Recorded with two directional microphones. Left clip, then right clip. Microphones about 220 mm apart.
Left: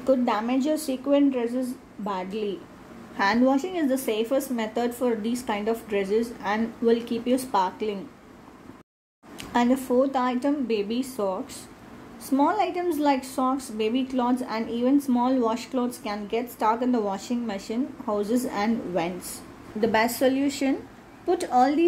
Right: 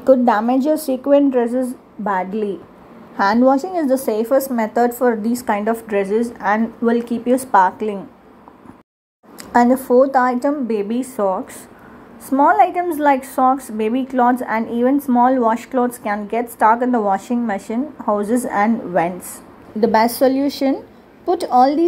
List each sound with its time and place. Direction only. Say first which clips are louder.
0.0 s a woman's voice: right 10 dB; 30° right (ahead or behind)
3.5 s a woman's voice: right 8 dB; 5° right (ahead or behind)
9.4 s a sound: right 10 dB; 5° right (ahead or behind)
9.8 s a woman's voice: right 10 dB; 20° right (ahead or behind)
10.1 s a woman's voice: right 9 dB; 5° right (ahead or behind)
19.8 s a woman's voice: right 8 dB; 25° right (ahead or behind)